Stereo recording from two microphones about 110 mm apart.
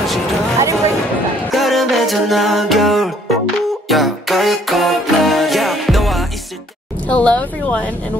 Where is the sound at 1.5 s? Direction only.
Centre (ahead or behind).